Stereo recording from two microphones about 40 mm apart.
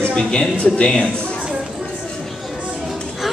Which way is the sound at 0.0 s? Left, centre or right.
Left.